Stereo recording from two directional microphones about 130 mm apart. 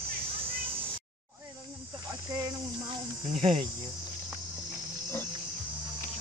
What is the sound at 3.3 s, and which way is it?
Cricket, 55° right (ahead or behind).